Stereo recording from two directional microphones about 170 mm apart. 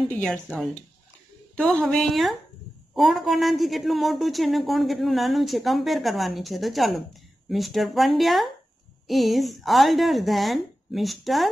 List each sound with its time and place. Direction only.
0.1 s speech: 5° left (ahead or behind)